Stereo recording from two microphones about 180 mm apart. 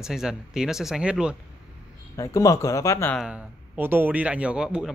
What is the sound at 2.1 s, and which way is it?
Speech, 20° left (ahead or behind).